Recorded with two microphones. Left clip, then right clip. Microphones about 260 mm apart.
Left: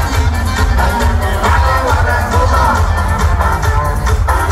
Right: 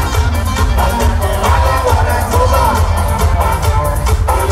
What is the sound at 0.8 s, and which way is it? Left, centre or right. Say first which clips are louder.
Music: even; right.